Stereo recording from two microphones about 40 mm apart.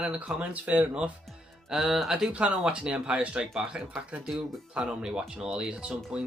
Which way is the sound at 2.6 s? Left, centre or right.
Right.